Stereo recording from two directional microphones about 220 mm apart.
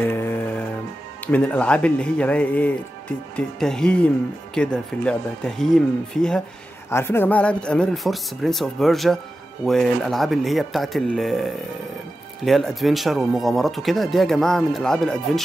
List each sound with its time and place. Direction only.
0.0 s music: 10° left (ahead or behind)
1.2 s speech: 5° left (ahead or behind)